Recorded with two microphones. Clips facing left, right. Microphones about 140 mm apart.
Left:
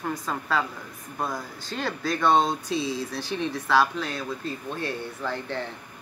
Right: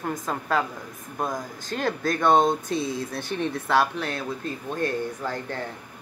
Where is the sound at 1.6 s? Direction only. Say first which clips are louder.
Right 3 dB; 50° right (ahead or behind).